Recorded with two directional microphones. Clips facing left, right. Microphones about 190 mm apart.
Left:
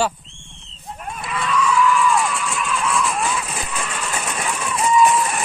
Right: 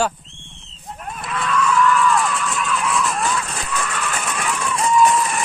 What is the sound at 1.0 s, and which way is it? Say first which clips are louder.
Cattle: even; centre (ahead or behind).